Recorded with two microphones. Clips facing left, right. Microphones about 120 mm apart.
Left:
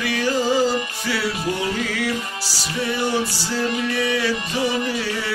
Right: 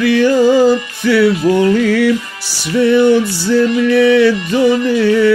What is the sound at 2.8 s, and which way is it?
Music, 75° right (ahead or behind).